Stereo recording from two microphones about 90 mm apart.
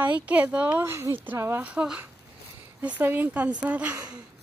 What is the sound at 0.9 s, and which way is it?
Speech, 30° right (ahead or behind).